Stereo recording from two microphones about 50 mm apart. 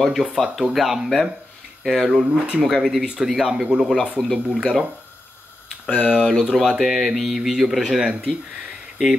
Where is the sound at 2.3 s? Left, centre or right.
Right.